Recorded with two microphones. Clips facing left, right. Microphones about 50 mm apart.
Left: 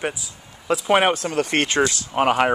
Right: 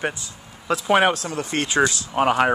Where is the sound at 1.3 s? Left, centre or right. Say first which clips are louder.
Left 4 dB; left.